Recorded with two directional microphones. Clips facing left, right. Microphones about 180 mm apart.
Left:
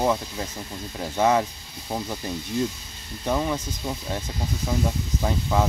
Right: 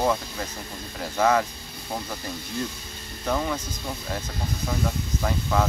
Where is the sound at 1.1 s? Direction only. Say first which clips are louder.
Left 1 dB; 20° left (ahead or behind).